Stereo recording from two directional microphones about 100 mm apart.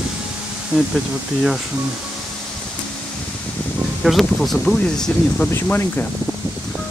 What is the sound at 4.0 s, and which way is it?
Speech, centre (ahead or behind).